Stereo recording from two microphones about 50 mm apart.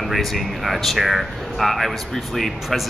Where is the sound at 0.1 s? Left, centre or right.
Centre.